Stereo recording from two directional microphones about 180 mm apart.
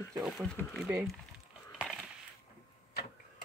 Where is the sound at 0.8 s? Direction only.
15° right (ahead or behind).